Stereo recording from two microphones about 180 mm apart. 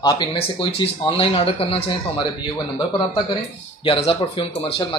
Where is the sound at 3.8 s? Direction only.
30° left (ahead or behind).